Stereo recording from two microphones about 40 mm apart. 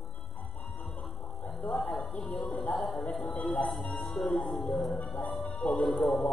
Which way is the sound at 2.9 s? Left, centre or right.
Centre.